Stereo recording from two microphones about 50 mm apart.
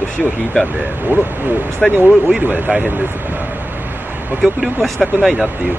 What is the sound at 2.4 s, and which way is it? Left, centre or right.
Speech, right.